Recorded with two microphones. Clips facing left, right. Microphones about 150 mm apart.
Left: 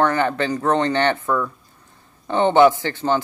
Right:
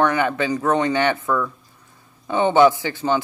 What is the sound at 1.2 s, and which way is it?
Speech, 15° left (ahead or behind).